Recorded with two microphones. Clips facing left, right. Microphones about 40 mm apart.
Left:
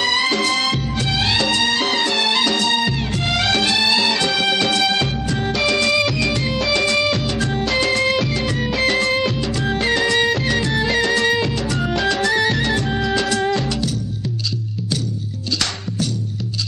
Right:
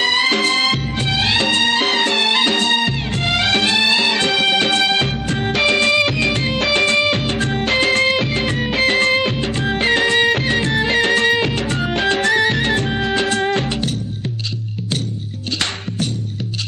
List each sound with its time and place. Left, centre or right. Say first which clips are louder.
0.0 s music: right 2 dB; right